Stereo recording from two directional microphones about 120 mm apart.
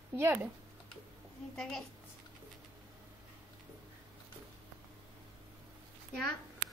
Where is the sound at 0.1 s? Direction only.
15° right (ahead or behind).